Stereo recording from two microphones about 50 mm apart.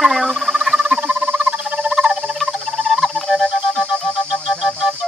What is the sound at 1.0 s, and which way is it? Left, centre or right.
Rodents, right.